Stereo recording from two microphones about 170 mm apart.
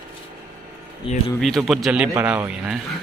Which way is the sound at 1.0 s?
30° left (ahead or behind).